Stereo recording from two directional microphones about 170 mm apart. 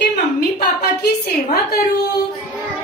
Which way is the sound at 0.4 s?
65° left (ahead or behind).